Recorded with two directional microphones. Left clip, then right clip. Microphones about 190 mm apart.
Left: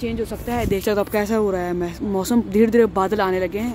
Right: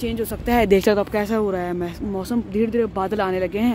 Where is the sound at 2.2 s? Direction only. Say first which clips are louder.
Left 5 dB; 20° left (ahead or behind).